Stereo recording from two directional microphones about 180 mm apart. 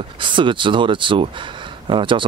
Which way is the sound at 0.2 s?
25° right (ahead or behind).